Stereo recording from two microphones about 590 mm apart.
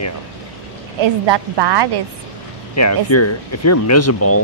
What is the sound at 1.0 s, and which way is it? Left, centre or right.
Speech, right.